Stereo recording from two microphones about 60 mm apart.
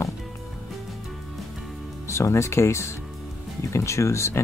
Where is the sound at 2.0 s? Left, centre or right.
Left.